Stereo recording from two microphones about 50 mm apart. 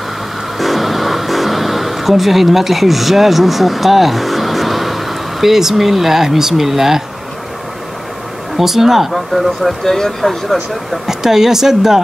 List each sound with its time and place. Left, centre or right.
0.6 s speech: centre
8.5 s speech: centre
11.1 s speech: centre